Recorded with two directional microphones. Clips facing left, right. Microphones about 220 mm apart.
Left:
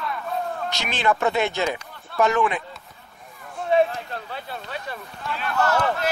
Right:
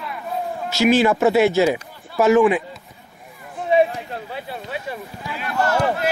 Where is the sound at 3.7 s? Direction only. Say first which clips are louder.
Right 3 dB; 10° right (ahead or behind).